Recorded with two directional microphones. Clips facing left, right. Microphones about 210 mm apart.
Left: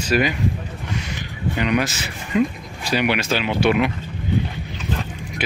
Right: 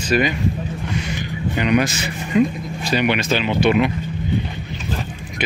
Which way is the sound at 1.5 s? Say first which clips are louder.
Right 3 dB; centre (ahead or behind).